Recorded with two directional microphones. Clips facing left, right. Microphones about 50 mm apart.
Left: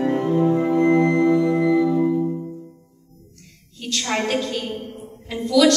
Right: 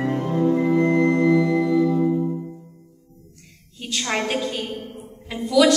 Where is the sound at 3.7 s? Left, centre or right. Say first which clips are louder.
Left 1 dB; centre.